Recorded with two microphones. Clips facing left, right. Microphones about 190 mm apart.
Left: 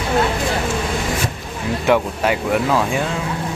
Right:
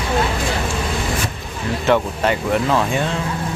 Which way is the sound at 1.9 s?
5° left (ahead or behind).